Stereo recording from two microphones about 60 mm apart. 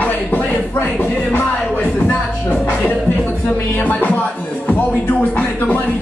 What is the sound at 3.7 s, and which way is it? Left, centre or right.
Speech, left.